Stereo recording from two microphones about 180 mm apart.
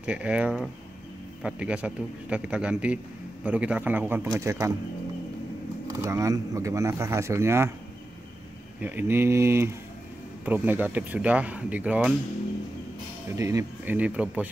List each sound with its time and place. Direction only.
0.0 s speech: 5° right (ahead or behind)
5.9 s speech: 20° right (ahead or behind)
8.8 s speech: 10° right (ahead or behind)
13.4 s speech: 20° right (ahead or behind)